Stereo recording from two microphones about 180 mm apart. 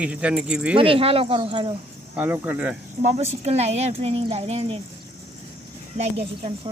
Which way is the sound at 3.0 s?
35° right (ahead or behind).